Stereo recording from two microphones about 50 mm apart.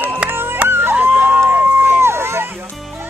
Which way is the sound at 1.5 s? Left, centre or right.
Right.